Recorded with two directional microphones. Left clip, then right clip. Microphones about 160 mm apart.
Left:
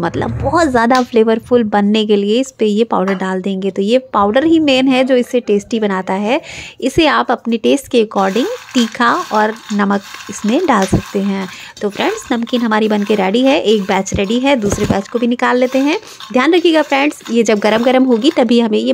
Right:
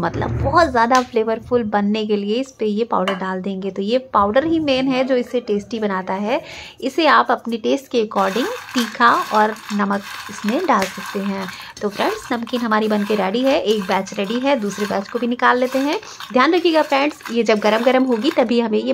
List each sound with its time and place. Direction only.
0.0 s speech: 40° left (ahead or behind)